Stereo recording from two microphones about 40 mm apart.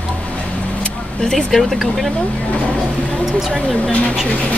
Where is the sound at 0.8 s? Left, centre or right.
Centre.